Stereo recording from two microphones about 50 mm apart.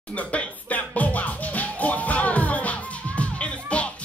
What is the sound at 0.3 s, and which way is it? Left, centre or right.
Music, left.